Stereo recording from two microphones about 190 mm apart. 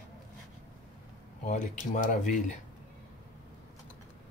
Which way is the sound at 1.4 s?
40° left (ahead or behind).